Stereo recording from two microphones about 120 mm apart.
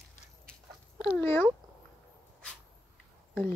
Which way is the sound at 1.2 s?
20° left (ahead or behind).